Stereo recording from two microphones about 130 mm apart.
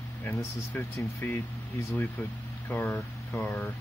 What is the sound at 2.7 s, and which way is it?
Speech, 10° left (ahead or behind).